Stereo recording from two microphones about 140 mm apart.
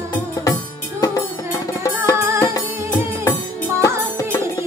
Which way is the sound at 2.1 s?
15° right (ahead or behind).